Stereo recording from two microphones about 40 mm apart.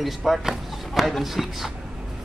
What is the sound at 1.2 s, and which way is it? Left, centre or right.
Speech, centre.